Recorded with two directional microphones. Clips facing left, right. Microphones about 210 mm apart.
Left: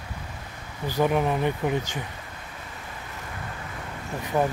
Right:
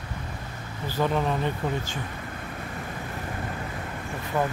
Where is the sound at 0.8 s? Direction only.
15° left (ahead or behind).